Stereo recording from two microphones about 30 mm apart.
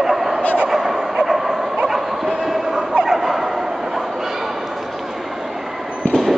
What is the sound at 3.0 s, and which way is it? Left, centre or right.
Bow-wow, centre.